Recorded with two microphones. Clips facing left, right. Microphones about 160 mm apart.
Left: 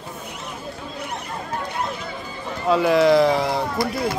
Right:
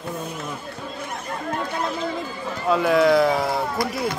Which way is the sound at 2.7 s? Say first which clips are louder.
Left 1 dB; centre (ahead or behind).